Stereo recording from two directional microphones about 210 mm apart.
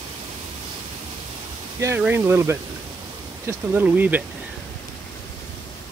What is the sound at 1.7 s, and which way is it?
Speech, 10° right (ahead or behind).